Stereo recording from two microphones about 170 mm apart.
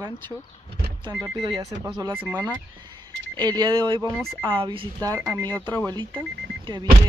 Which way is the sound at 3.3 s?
25° right (ahead or behind).